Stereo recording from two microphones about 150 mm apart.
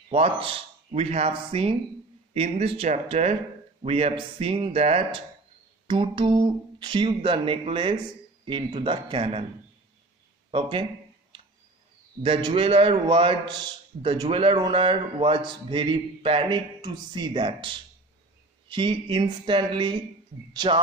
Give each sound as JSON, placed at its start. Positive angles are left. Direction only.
{"t": 0.1, "sound": "a man's voice", "side_deg": -40}
{"t": 5.9, "sound": "a man's voice", "side_deg": -35}
{"t": 10.5, "sound": "a man's voice", "side_deg": -35}
{"t": 12.2, "sound": "a man's voice", "side_deg": -35}